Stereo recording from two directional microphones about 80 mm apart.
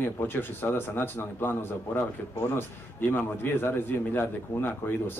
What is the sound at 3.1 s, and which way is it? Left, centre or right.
A man's voice, left.